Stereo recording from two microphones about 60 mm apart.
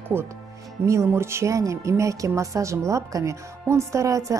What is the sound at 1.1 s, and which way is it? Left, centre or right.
Speech, right.